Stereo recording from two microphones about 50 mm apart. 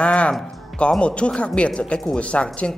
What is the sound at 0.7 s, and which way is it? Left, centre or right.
A woman's voice, left.